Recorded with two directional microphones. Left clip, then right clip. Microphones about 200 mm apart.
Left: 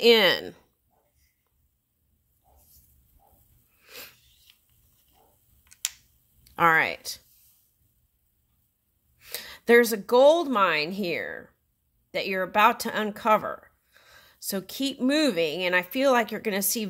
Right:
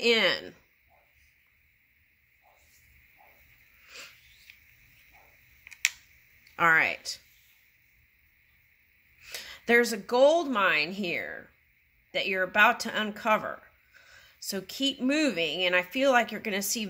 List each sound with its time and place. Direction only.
0.0 s speech: 55° left (ahead or behind)
3.8 s a sound: 55° left (ahead or behind)
6.5 s speech: 55° left (ahead or behind)
9.2 s speech: 55° left (ahead or behind)